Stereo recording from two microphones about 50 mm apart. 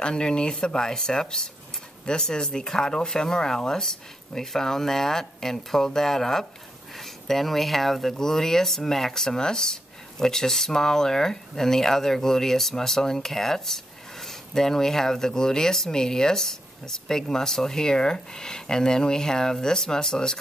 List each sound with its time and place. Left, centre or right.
0.0 s speech: centre